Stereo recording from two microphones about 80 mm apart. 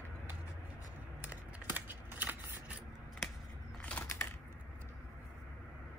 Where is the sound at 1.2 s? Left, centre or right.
Right.